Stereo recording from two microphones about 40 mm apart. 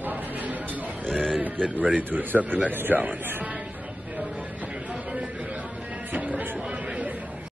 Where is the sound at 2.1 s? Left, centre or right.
Right.